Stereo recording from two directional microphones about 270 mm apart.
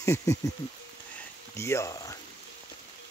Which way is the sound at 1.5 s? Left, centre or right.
Centre.